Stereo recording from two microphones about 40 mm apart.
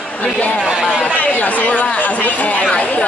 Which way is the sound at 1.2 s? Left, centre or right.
Left.